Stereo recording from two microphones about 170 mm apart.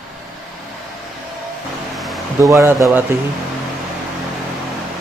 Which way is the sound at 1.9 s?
Centre (ahead or behind).